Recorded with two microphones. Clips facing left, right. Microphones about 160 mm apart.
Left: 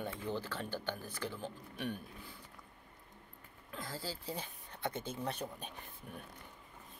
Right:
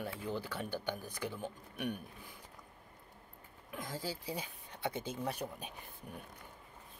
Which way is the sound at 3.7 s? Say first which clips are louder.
Right 2 dB; 15° right (ahead or behind).